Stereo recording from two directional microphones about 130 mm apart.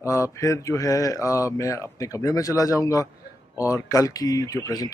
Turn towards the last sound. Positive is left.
turn(degrees=30)  # may be behind; listen again after turning